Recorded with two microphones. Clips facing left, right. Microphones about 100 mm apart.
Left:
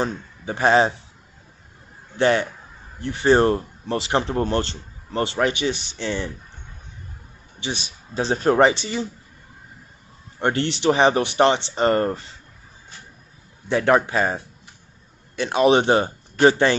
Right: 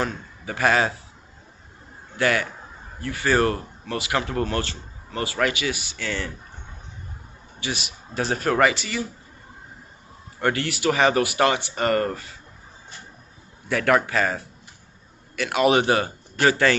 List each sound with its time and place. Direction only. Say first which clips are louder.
0.0 s a man's voice: left 2 dB; 25° left (ahead or behind)
2.1 s speech: left 4 dB; 25° left (ahead or behind)
8.2 s speech: left 3 dB; 25° left (ahead or behind)
10.4 s speech: left 3 dB; 30° left (ahead or behind)
13.7 s speech: left 2 dB; 25° left (ahead or behind)